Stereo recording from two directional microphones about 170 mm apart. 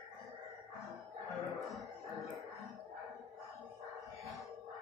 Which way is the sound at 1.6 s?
Centre (ahead or behind).